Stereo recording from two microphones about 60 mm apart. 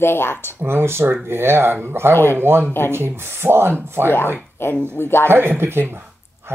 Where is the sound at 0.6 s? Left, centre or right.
Right.